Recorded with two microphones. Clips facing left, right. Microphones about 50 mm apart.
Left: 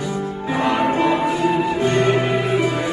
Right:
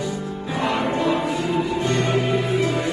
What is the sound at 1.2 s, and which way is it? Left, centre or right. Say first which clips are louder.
Music: left 4 dB; centre.